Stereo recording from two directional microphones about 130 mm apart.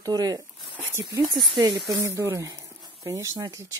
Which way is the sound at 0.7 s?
20° right (ahead or behind).